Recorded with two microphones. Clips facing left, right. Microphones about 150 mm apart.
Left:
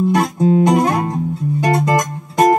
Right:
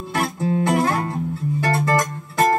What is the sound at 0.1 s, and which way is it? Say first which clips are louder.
Music: left 8 dB; 15° left (ahead or behind).